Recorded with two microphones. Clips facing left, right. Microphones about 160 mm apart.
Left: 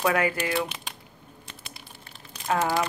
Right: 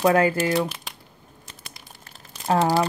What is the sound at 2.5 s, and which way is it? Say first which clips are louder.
Speech: right 5 dB; 35° right (ahead or behind).